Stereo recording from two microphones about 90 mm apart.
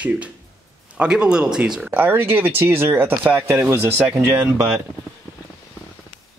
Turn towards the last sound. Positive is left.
turn(degrees=-35)  # may be behind; listen again after turning